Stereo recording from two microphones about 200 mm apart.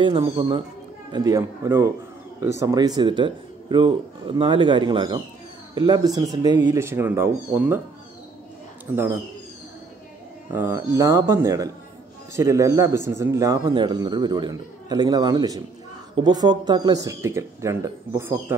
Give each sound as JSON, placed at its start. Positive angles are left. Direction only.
{"t": 0.0, "sound": "speech", "side_deg": -25}
{"t": 8.9, "sound": "speech", "side_deg": -10}
{"t": 10.5, "sound": "speech", "side_deg": -15}